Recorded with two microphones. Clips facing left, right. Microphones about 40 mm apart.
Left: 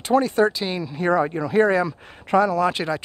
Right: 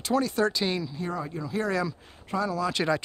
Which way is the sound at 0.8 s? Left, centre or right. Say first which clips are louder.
Left 12 dB; left.